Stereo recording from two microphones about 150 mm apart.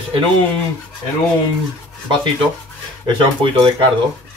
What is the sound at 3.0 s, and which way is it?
Speech, 35° right (ahead or behind).